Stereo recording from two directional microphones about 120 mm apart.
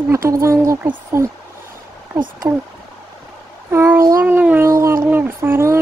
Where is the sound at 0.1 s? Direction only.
25° right (ahead or behind).